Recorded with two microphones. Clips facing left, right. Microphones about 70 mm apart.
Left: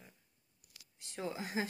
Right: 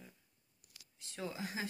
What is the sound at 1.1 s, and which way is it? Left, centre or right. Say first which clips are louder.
Speech: left 3 dB; left.